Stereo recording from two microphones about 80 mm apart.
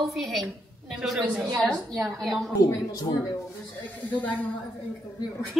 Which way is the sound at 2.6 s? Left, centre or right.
Left.